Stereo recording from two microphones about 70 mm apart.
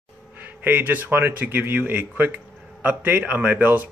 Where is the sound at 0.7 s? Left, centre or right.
Right.